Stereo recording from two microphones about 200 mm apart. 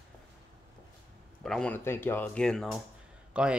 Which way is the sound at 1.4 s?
5° left (ahead or behind).